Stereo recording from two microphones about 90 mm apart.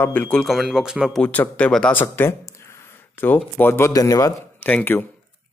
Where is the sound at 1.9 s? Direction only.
25° left (ahead or behind).